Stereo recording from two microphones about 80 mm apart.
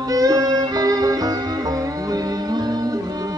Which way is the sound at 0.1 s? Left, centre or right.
Right.